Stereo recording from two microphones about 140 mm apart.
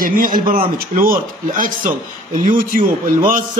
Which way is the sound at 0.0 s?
85° right.